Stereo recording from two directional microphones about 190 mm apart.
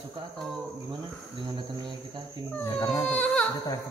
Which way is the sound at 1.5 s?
20° right (ahead or behind).